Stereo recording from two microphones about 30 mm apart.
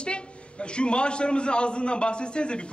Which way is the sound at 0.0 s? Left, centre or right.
Left.